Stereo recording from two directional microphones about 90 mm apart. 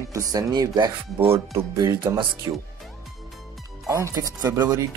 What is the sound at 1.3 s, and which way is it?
Speech, 30° right (ahead or behind).